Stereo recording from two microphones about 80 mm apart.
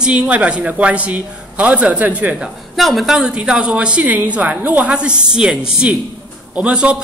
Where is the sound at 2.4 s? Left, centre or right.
Centre.